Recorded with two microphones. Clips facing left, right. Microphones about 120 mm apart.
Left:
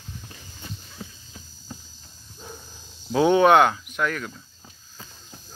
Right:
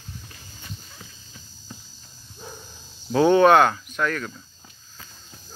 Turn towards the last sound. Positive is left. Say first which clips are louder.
# right 1 dB
turn(degrees=10)  # may be behind; listen again after turning